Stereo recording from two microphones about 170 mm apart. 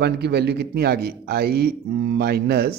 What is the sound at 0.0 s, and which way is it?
A man's voice, 75° right (ahead or behind).